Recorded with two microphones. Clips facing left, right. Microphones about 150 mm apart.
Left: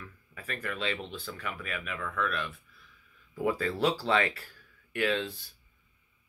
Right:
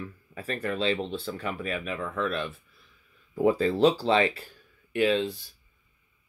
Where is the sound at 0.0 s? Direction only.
30° right (ahead or behind).